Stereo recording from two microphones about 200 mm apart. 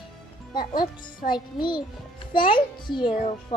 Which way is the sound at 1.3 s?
20° left (ahead or behind).